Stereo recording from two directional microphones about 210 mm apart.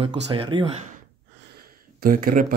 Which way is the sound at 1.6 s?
45° right (ahead or behind).